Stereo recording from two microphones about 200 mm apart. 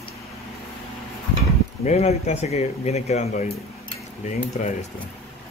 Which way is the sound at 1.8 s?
35° left (ahead or behind).